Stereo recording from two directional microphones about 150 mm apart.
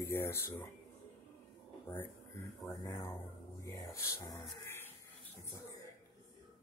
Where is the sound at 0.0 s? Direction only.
15° left (ahead or behind).